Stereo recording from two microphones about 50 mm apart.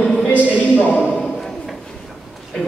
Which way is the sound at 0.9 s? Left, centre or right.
Centre.